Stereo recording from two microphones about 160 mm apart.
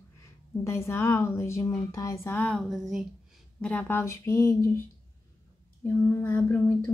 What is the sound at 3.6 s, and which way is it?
Speech, 10° left (ahead or behind).